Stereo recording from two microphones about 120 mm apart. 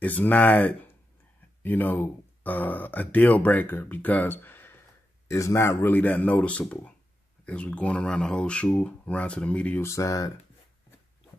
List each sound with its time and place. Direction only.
0.0 s speech: 15° left (ahead or behind)
9.8 s speech: 25° left (ahead or behind)